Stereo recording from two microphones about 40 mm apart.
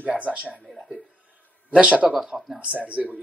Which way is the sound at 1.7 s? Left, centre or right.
Right.